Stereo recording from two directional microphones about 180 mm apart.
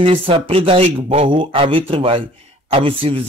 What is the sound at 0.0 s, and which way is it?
A man's voice, 30° right (ahead or behind).